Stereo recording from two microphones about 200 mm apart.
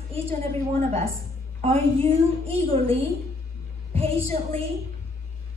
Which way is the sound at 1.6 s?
30° right (ahead or behind).